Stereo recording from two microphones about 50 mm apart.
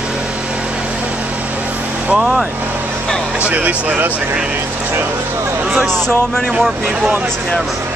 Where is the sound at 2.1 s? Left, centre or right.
Centre.